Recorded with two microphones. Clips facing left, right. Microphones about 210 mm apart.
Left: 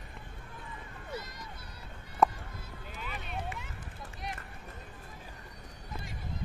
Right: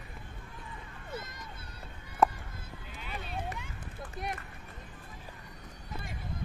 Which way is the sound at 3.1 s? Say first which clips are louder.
Right 2 dB; 35° right (ahead or behind).